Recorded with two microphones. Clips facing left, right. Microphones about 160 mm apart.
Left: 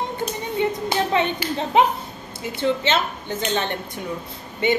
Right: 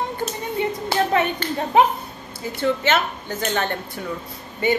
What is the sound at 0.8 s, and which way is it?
Clapping, 20° left (ahead or behind).